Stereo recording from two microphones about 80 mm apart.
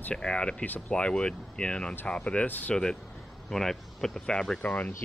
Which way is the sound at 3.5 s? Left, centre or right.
Centre.